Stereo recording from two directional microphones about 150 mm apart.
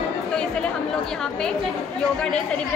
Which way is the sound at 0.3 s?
5° left (ahead or behind).